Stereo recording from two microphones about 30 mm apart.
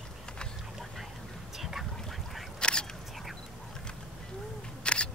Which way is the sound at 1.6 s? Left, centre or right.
Centre.